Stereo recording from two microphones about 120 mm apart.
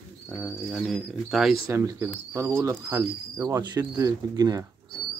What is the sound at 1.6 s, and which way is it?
Speech, 25° right (ahead or behind).